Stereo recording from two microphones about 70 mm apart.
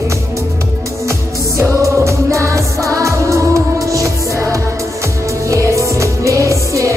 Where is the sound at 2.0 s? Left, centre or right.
Right.